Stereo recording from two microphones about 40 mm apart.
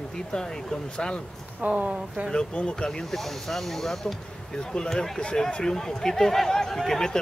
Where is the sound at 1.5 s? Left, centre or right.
Right.